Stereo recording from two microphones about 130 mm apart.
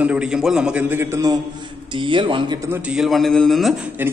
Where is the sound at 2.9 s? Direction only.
Centre (ahead or behind).